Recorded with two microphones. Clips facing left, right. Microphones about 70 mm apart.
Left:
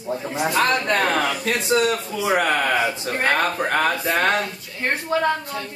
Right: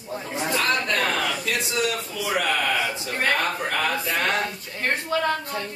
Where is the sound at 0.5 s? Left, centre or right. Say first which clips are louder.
Left 4 dB; left.